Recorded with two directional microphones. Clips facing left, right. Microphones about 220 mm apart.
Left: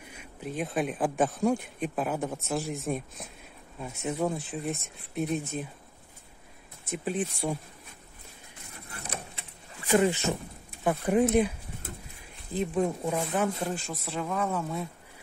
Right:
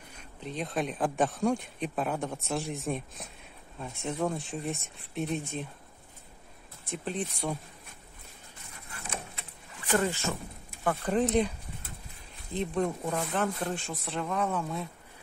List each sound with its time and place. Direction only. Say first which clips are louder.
0.2 s speech: left 3 dB; 5° left (ahead or behind)
6.9 s speech: left 3 dB; 5° left (ahead or behind)
9.8 s speech: left 4 dB; 15° left (ahead or behind)
12.5 s speech: left 2 dB; 5° left (ahead or behind)